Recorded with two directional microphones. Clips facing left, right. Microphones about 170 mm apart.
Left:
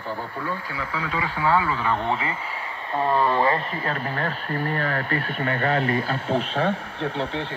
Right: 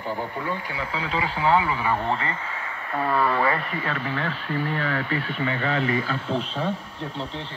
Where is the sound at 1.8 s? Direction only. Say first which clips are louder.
Even; 10° right (ahead or behind).